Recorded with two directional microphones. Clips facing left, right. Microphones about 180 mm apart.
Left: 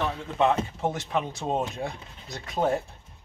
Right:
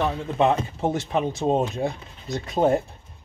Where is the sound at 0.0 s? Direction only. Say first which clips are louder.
Right 3 dB; 25° right (ahead or behind).